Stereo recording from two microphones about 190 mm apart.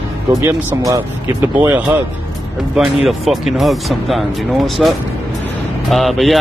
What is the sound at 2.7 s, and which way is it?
Speech, centre (ahead or behind).